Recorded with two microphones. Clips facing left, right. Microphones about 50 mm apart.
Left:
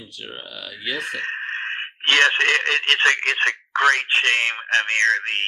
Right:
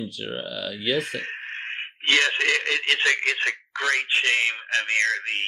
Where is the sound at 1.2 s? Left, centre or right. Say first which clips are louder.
Left 6 dB; left.